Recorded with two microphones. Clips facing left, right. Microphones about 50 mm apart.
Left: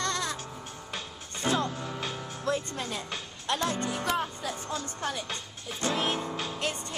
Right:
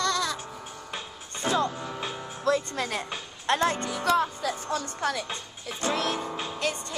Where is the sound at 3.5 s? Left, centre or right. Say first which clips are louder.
Right 5 dB; right.